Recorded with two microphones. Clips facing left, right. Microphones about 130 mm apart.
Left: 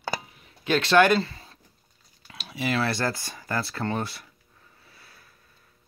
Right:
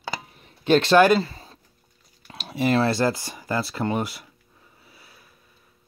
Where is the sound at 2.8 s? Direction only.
20° right (ahead or behind).